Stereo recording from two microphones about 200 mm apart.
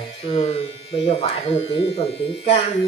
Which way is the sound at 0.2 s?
30° left (ahead or behind).